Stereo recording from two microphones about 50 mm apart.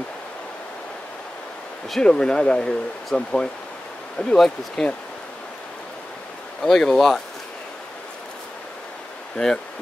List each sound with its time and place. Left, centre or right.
2.0 s speech: centre
4.8 s speech: centre
6.6 s speech: centre
9.4 s speech: centre